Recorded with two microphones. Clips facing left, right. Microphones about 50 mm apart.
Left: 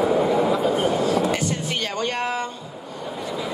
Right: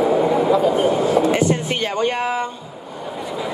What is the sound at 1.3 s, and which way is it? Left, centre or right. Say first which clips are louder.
Music: right 6 dB; right.